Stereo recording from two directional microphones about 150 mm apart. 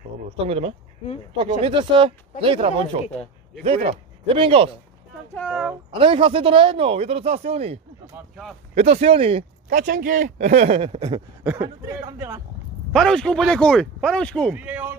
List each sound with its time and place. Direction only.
0.4 s speech: 40° right (ahead or behind)
5.5 s speech: 5° right (ahead or behind)
5.9 s speech: 35° right (ahead or behind)
9.7 s speech: 65° right (ahead or behind); by 11.0 s 40° right (ahead or behind)
11.0 s a man's voice: 30° right (ahead or behind)
11.4 s speech: 10° right (ahead or behind)
11.9 s a man's voice: 20° right (ahead or behind)
12.9 s speech: 5° left (ahead or behind)
14.5 s speech: 10° right (ahead or behind)